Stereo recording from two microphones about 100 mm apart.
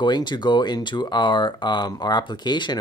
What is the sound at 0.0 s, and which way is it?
Speech, 50° left (ahead or behind).